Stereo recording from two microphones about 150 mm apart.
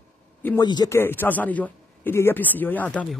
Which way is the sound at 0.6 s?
25° left (ahead or behind).